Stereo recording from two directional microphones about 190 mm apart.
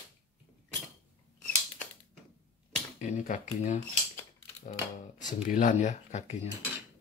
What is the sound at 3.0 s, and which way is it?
Speech, 40° left (ahead or behind).